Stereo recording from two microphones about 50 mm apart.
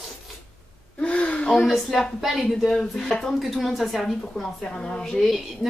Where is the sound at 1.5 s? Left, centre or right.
Centre.